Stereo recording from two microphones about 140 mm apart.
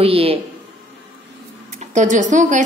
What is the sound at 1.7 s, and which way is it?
Speech, 55° right (ahead or behind).